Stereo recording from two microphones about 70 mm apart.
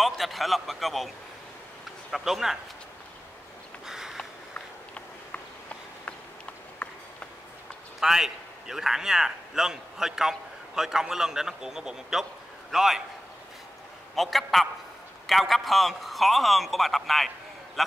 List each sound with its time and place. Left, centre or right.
0.0 s a man's voice: centre
3.8 s sniff: centre
4.6 s a sound: centre
8.0 s a man's voice: centre
14.1 s a man's voice: centre